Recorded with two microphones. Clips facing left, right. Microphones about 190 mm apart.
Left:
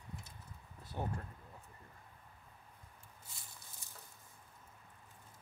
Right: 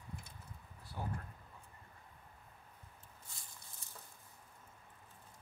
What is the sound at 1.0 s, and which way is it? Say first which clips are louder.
Speech: left 3 dB; 25° left (ahead or behind).